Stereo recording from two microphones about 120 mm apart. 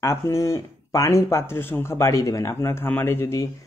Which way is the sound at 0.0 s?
25° left (ahead or behind).